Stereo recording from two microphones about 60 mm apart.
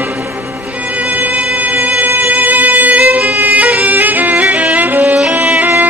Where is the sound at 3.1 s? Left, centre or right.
Right.